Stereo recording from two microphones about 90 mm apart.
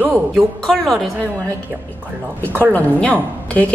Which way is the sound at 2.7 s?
15° left (ahead or behind).